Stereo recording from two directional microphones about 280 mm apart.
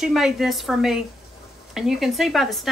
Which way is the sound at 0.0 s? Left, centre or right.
Centre.